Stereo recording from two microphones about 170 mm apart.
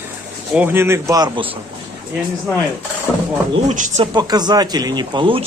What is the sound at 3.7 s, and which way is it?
Speech, 45° right (ahead or behind).